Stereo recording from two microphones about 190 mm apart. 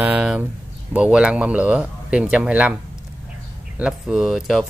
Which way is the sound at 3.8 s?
5° right (ahead or behind).